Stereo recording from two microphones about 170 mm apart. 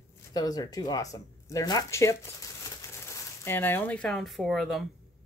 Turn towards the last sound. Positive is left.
turn(degrees=0)  # may be behind; listen again after turning